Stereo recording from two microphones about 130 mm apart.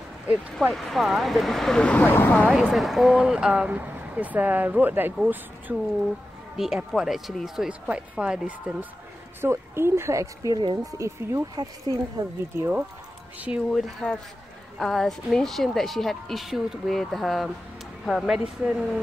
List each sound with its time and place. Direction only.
0.6 s a woman's voice: centre (ahead or behind)
2.5 s a woman's voice: centre (ahead or behind)
9.4 s speech: 20° right (ahead or behind)
13.7 s a woman's voice: 5° left (ahead or behind)